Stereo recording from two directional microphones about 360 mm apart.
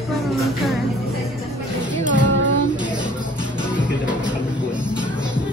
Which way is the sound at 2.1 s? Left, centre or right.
Right.